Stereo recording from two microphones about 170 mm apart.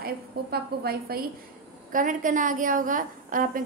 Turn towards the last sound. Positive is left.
turn(degrees=-55)  # may be behind; listen again after turning